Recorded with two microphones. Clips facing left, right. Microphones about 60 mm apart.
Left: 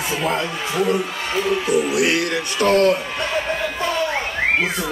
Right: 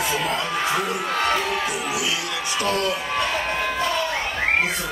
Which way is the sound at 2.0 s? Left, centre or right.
Left.